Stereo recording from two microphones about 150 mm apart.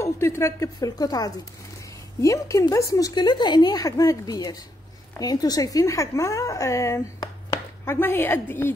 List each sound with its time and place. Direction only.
0.0 s a woman's voice: 20° left (ahead or behind)